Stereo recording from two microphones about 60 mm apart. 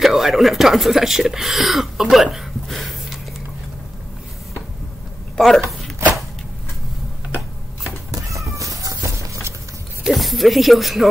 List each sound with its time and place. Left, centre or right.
0.0 s speech: centre
5.4 s speech: centre
8.1 s cat: right
10.0 s speech: centre